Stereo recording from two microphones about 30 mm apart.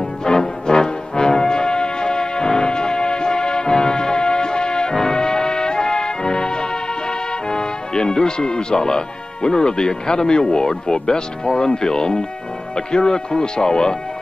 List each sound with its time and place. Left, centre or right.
0.2 s music: left
12.7 s speech: left